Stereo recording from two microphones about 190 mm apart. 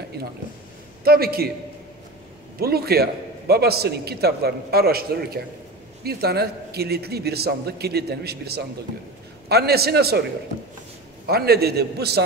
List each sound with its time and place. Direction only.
1.0 s a man's voice: 55° right (ahead or behind)
2.6 s a man's voice: 55° right (ahead or behind)
11.2 s a man's voice: 55° right (ahead or behind)